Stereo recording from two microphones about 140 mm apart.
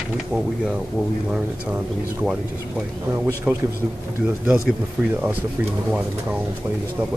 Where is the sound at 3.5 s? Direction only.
5° right (ahead or behind).